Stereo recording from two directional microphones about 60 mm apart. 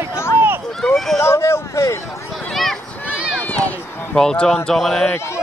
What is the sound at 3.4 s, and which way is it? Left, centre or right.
Run, left.